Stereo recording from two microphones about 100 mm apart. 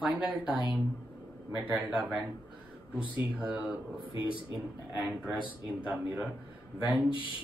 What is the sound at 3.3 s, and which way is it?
Speech, 10° right (ahead or behind).